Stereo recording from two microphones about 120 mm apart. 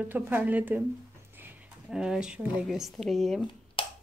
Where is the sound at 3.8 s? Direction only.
45° left (ahead or behind).